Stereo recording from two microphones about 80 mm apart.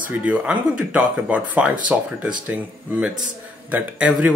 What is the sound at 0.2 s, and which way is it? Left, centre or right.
Speech, centre.